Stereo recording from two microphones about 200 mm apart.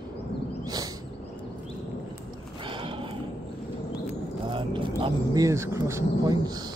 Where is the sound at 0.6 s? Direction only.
20° right (ahead or behind).